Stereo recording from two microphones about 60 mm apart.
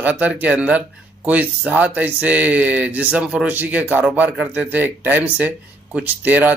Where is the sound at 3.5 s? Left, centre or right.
Right.